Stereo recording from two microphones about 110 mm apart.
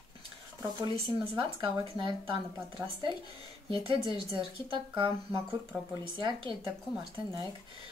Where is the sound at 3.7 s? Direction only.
50° right (ahead or behind).